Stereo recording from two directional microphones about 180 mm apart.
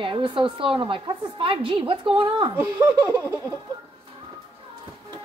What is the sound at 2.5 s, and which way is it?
A woman's voice, 10° right (ahead or behind).